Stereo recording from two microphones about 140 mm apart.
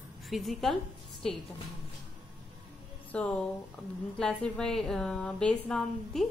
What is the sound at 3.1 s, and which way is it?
A woman's voice, 10° left (ahead or behind).